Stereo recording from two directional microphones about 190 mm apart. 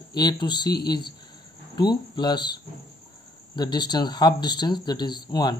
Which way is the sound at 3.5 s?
20° left (ahead or behind).